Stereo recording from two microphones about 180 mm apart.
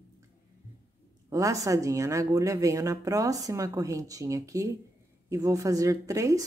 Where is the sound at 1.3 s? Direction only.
20° right (ahead or behind).